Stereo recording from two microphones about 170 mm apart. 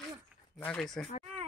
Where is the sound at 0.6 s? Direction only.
5° left (ahead or behind).